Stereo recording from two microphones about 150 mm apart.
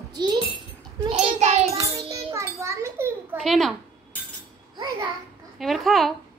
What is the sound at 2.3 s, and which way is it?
A child's voice, 20° right (ahead or behind).